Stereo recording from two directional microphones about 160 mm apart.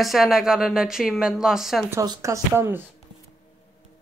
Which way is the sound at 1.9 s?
20° right (ahead or behind).